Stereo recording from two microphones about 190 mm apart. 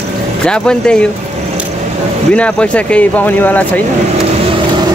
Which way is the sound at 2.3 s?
5° left (ahead or behind).